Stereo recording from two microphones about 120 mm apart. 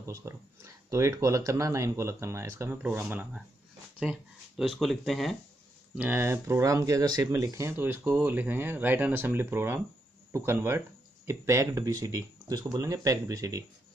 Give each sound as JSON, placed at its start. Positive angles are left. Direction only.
{"t": 0.0, "sound": "speech", "side_deg": -25}
{"t": 5.9, "sound": "speech", "side_deg": -15}